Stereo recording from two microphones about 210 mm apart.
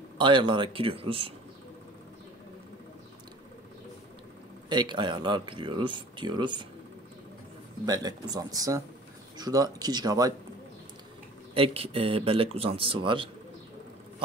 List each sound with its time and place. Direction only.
0.2 s speech: 20° right (ahead or behind)
4.6 s speech: 20° right (ahead or behind)
7.8 s speech: 20° right (ahead or behind)
11.5 s speech: 25° right (ahead or behind)